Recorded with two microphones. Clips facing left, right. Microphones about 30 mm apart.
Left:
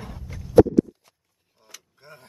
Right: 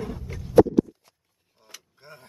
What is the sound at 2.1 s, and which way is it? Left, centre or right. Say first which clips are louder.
Speech: even; right.